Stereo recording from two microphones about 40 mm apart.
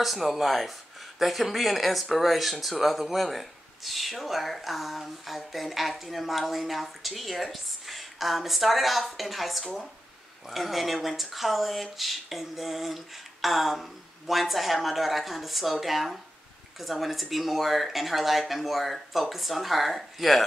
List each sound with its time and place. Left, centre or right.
0.0 s a woman's voice: centre